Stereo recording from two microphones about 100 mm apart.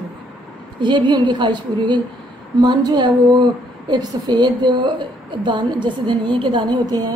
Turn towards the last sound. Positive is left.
turn(degrees=-40)  # may be behind; listen again after turning